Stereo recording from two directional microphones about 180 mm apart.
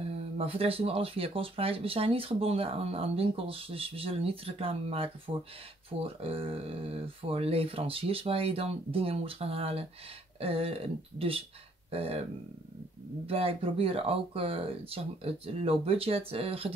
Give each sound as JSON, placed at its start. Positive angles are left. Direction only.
{"t": 0.4, "sound": "speech", "side_deg": -35}
{"t": 13.3, "sound": "speech", "side_deg": -30}